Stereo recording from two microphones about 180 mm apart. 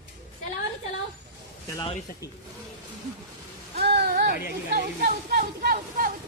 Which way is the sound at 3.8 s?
65° right (ahead or behind).